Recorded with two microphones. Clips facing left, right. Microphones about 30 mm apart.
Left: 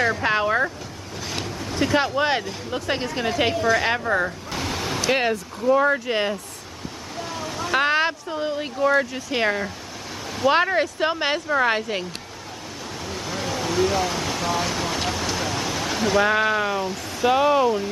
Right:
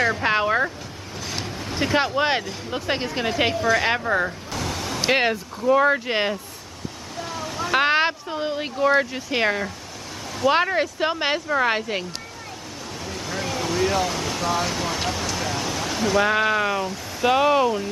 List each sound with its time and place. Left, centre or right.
0.0 s speech: centre
3.5 s speech: centre
4.5 s vehicle: centre
5.0 s speech: right
7.2 s waves: centre
7.8 s speech: centre
10.3 s speech: centre
13.0 s a sound: centre
17.3 s speech: centre